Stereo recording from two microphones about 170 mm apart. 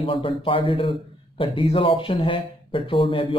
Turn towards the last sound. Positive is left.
turn(degrees=30)  # may be behind; listen again after turning